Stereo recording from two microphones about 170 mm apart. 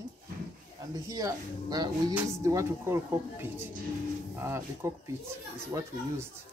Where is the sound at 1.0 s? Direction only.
20° right (ahead or behind).